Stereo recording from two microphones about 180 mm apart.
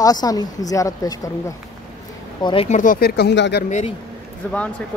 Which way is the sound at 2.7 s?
45° left (ahead or behind).